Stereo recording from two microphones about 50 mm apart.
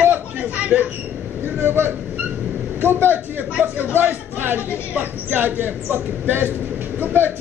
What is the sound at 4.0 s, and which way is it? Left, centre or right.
A man's voice, right.